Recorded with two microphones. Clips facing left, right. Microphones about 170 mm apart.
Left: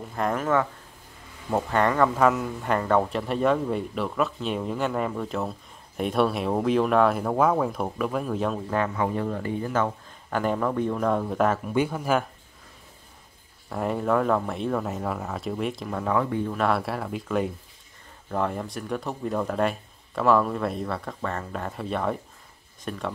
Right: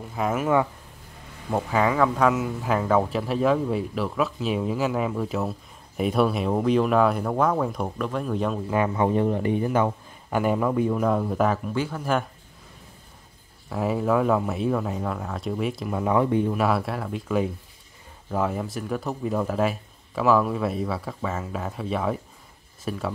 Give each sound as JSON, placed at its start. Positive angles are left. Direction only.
{"t": 0.1, "sound": "speech", "side_deg": -5}
{"t": 8.7, "sound": "speech", "side_deg": -20}
{"t": 11.7, "sound": "speech", "side_deg": 15}
{"t": 13.7, "sound": "speech", "side_deg": -5}
{"t": 16.0, "sound": "speech", "side_deg": -15}
{"t": 16.5, "sound": "speech", "side_deg": -5}